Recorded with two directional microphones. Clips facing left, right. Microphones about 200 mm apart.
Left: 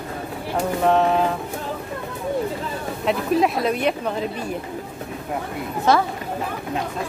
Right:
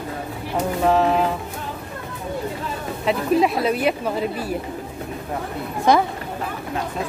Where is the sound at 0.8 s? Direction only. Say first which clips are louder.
Even; centre (ahead or behind).